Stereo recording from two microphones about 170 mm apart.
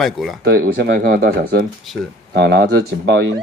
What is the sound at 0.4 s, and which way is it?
Speech, 70° right (ahead or behind).